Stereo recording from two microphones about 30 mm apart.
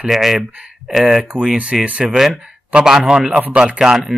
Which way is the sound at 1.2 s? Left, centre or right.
Right.